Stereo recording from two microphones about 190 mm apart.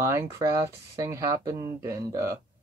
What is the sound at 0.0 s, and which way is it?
Speech, 15° right (ahead or behind).